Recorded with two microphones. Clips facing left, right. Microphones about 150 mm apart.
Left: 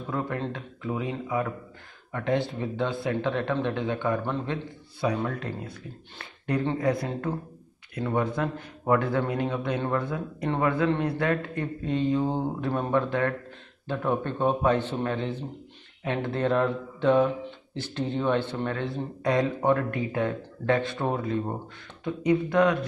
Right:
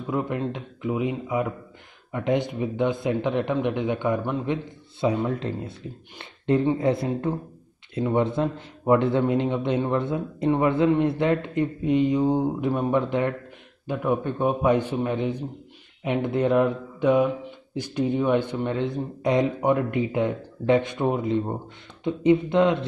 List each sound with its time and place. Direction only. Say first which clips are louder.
0.1 s speech: right 4 dB; 20° right (ahead or behind)